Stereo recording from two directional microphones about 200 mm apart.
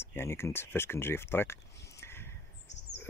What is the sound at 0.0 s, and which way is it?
Speech, 10° left (ahead or behind).